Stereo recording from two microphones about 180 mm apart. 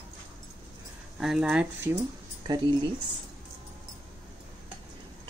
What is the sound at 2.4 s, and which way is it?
Speech, 20° right (ahead or behind).